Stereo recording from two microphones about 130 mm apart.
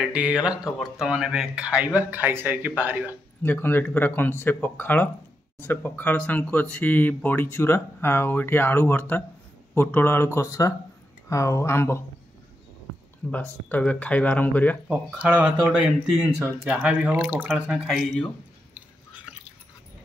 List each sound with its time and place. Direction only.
0.0 s speech: 10° right (ahead or behind)
3.4 s speech: 15° left (ahead or behind)
13.3 s speech: 15° left (ahead or behind)
14.9 s speech: 10° right (ahead or behind)